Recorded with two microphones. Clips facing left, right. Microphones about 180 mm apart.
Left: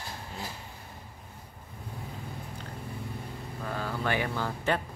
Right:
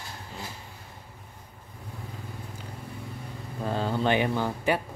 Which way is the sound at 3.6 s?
25° right (ahead or behind).